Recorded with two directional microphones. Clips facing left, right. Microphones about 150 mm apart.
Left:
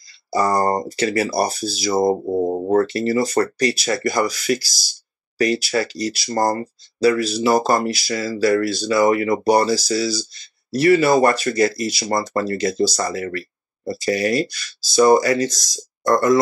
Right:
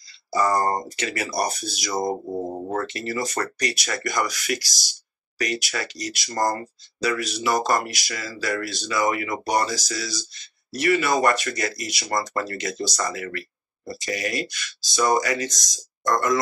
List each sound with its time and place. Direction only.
0.3 s speech: 35° left (ahead or behind)